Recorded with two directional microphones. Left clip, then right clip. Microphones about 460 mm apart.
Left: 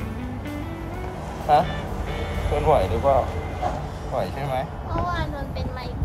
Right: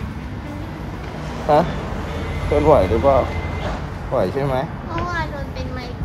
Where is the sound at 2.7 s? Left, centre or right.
Centre.